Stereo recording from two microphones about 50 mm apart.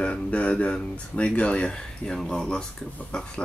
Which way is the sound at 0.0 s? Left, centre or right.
Left.